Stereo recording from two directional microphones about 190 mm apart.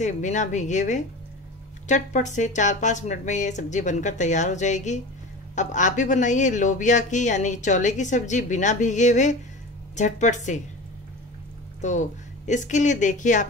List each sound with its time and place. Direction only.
0.0 s speech: 40° left (ahead or behind)
11.8 s speech: 40° left (ahead or behind)